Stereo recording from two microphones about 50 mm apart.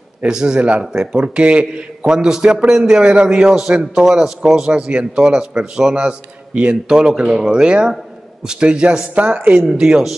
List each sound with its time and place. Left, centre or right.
0.3 s a man's voice: centre
2.1 s a man's voice: centre
3.0 s a man's voice: right
9.1 s speech: right
9.8 s a man's voice: centre